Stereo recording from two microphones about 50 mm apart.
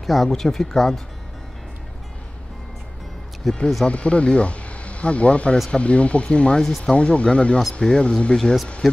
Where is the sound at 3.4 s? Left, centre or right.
Centre.